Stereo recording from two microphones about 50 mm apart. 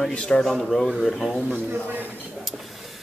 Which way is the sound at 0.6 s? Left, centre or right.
Centre.